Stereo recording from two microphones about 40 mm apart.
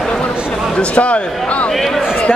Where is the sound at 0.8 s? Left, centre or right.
Left.